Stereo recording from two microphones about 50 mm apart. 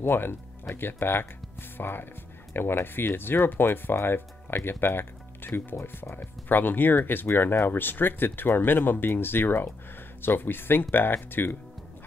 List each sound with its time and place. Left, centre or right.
0.0 s speech: left